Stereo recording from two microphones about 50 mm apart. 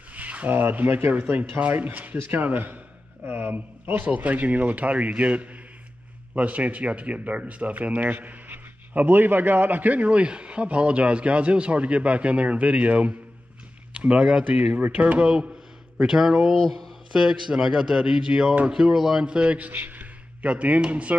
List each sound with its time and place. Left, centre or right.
0.1 s a man's voice: right
16.0 s speech: centre
17.1 s speech: centre
19.2 s speech: right
19.7 s a man's voice: right